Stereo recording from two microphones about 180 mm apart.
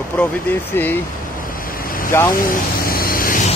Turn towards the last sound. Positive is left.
turn(degrees=50)  # may be behind; listen again after turning